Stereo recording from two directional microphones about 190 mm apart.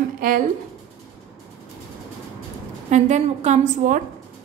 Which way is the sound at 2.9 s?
35° right (ahead or behind).